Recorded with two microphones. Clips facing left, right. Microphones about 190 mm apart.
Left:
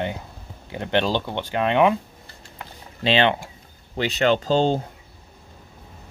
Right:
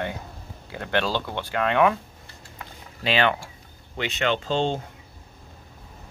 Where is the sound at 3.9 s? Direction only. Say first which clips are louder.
Left 5 dB; 35° left (ahead or behind).